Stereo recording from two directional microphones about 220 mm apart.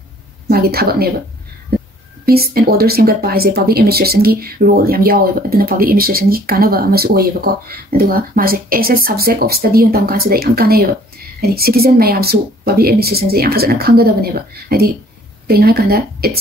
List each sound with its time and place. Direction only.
0.5 s a woman's voice: 45° right (ahead or behind)
2.2 s speech: 45° right (ahead or behind)